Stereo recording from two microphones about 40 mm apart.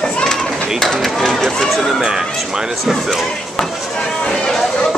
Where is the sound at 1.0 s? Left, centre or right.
Centre.